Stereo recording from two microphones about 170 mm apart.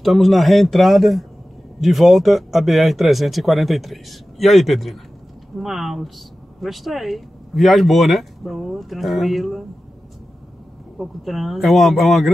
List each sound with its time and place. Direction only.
0.0 s speech: centre (ahead or behind)
11.0 s speech: centre (ahead or behind)